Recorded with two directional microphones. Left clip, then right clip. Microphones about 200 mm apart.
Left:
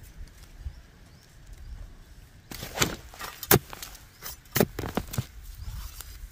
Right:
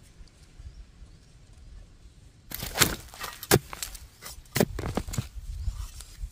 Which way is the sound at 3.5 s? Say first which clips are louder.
Even; centre (ahead or behind).